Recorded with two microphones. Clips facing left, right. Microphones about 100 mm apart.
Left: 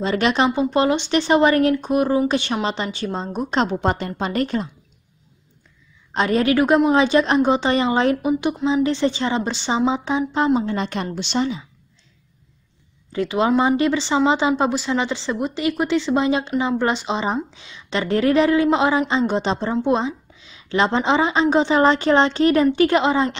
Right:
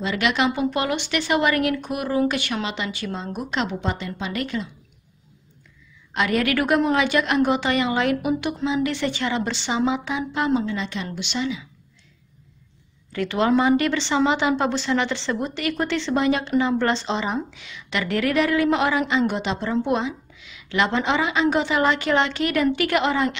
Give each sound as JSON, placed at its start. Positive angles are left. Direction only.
{"t": 0.0, "sound": "speech", "side_deg": 35}
{"t": 6.1, "sound": "a woman's voice", "side_deg": 30}
{"t": 10.7, "sound": "a woman's voice", "side_deg": 45}
{"t": 11.1, "sound": "speech", "side_deg": 35}
{"t": 13.1, "sound": "a woman's voice", "side_deg": 20}
{"t": 17.2, "sound": "a woman's voice", "side_deg": 25}